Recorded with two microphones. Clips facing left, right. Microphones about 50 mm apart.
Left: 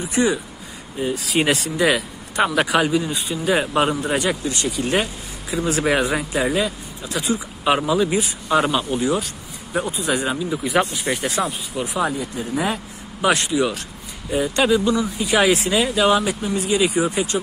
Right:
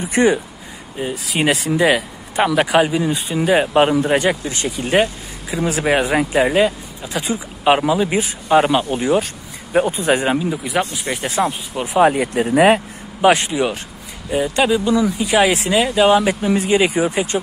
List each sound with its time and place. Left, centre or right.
0.1 s speech: right
1.1 s speech: centre
1.8 s a man's voice: centre
3.7 s a man's voice: right
5.5 s speech: centre
6.1 s speech: right
7.1 s a man's voice: centre; by 10.4 s right
10.5 s speech: centre
11.7 s speech: right
12.0 s speech: right
13.2 s a man's voice: right
14.3 s speech: centre
16.4 s a man's voice: right